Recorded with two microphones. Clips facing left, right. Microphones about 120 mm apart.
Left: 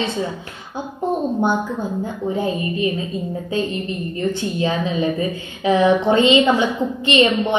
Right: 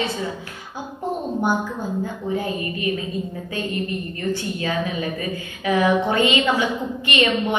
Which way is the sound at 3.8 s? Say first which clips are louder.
Left 3 dB; 25° left (ahead or behind).